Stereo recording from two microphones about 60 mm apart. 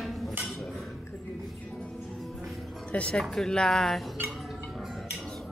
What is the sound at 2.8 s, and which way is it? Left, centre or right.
Speech, centre.